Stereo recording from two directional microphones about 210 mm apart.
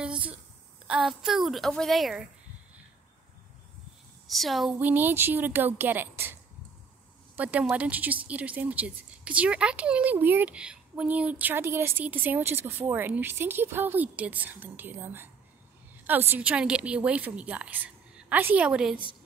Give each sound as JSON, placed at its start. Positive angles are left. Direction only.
{"t": 0.0, "sound": "a sound", "side_deg": -5}
{"t": 0.8, "sound": "a woman's voice", "side_deg": -5}
{"t": 4.3, "sound": "a woman's voice", "side_deg": 0}
{"t": 7.3, "sound": "a woman's voice", "side_deg": -5}